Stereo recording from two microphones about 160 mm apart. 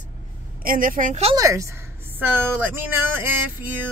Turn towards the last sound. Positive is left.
turn(degrees=-10)  # may be behind; listen again after turning